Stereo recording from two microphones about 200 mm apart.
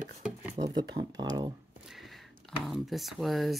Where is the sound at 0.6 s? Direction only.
20° right (ahead or behind).